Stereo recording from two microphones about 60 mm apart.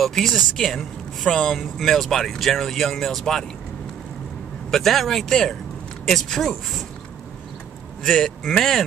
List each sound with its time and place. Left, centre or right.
0.0 s speech: centre
4.6 s speech: centre
8.0 s speech: centre